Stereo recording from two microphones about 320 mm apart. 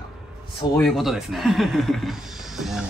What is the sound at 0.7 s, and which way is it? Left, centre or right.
Speech, centre.